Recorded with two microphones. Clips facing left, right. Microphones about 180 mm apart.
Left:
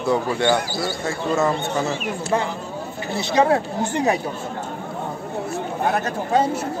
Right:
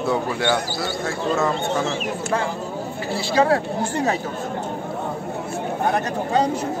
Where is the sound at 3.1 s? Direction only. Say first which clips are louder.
Left 1 dB; 20° left (ahead or behind).